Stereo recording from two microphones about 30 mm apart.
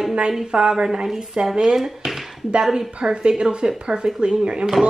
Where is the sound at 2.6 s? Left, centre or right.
Centre.